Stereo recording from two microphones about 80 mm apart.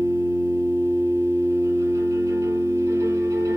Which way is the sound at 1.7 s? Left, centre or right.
Right.